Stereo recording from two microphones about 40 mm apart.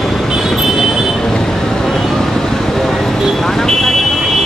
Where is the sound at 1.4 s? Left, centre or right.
Centre.